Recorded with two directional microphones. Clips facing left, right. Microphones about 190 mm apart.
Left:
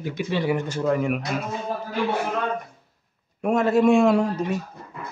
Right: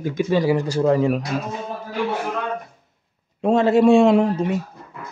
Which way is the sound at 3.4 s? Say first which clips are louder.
Right 4 dB; 25° right (ahead or behind).